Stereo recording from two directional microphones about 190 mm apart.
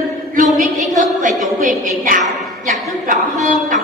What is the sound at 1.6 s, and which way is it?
Music, 45° right (ahead or behind).